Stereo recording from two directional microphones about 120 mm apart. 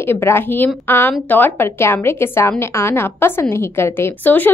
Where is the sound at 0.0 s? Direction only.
20° left (ahead or behind).